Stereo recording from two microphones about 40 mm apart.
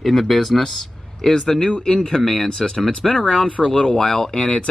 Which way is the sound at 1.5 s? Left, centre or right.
Left.